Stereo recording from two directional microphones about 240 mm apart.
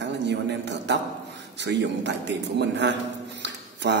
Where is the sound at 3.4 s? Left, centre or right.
Right.